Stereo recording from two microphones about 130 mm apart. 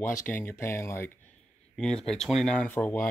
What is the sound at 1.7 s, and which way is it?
Speech, 5° left (ahead or behind).